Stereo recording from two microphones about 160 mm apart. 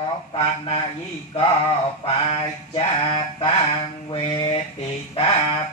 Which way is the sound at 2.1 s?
35° left (ahead or behind).